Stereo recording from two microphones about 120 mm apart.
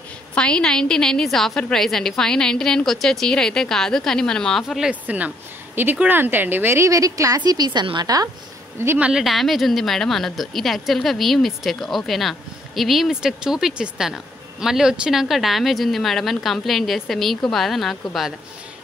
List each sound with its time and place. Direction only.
0.3 s a woman's voice: 10° left (ahead or behind); by 8.3 s 35° right (ahead or behind)
8.7 s speech: 15° right (ahead or behind)
9.2 s a woman's voice: centre (ahead or behind)